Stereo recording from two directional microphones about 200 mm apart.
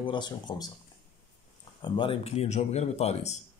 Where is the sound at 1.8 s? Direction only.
25° left (ahead or behind).